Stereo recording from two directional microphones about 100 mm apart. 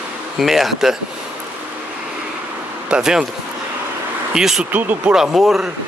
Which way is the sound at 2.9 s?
5° right (ahead or behind).